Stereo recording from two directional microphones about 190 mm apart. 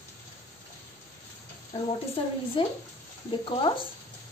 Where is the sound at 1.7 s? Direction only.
30° left (ahead or behind).